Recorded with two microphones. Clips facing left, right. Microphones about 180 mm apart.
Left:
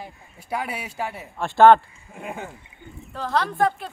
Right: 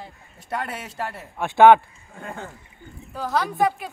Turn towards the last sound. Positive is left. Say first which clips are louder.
# even
turn(degrees=-10)  # may be behind; listen again after turning